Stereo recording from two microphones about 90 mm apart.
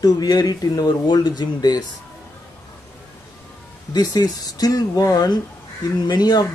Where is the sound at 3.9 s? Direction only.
45° left (ahead or behind).